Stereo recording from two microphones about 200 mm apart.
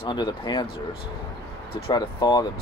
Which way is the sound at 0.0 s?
25° left (ahead or behind).